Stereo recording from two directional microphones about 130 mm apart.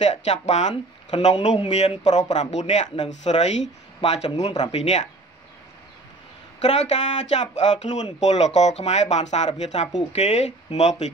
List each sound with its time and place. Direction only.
0.0 s speech: 60° left (ahead or behind)
6.6 s speech: 60° left (ahead or behind)